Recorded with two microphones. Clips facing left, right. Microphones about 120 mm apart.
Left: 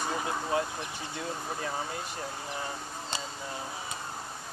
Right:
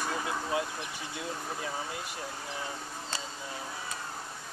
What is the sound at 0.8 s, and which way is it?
Speech, 10° right (ahead or behind).